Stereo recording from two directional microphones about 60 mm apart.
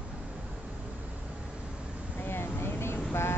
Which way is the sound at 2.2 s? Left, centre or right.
Left.